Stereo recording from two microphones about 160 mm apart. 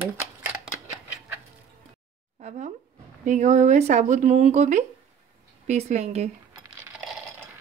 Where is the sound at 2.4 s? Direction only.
45° right (ahead or behind).